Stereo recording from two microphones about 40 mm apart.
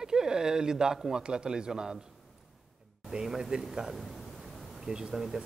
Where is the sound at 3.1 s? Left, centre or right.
Centre.